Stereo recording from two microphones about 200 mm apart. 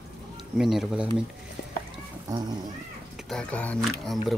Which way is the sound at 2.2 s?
20° right (ahead or behind).